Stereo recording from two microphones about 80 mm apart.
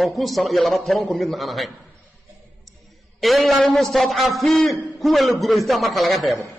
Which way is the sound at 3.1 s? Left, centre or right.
Centre.